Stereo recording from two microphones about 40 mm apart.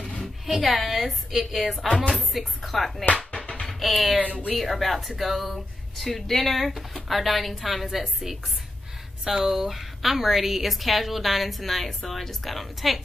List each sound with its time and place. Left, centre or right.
0.5 s speech: centre
3.3 s music: left
3.6 s music: centre
4.6 s speech: centre